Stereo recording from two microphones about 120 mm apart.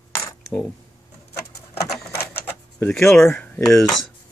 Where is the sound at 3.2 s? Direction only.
15° left (ahead or behind).